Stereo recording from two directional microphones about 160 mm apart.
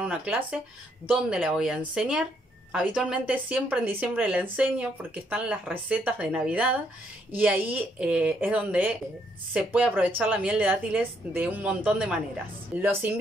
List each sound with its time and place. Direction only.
0.0 s speech: 10° right (ahead or behind)